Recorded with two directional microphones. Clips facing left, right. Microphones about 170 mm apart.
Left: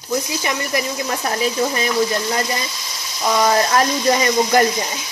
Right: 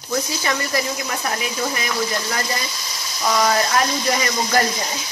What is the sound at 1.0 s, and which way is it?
A woman's voice, 30° left (ahead or behind).